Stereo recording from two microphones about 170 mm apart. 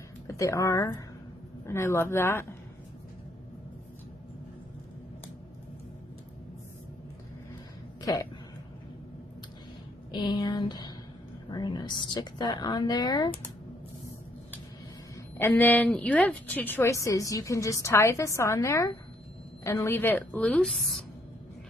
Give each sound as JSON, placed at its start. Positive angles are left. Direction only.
{"t": 0.3, "sound": "a woman's voice", "side_deg": 15}
{"t": 8.0, "sound": "speech", "side_deg": 20}
{"t": 10.1, "sound": "a woman's voice", "side_deg": 25}
{"t": 15.3, "sound": "a woman's voice", "side_deg": 10}